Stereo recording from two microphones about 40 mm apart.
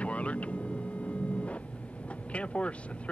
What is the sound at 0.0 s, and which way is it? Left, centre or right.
Vehicle, left.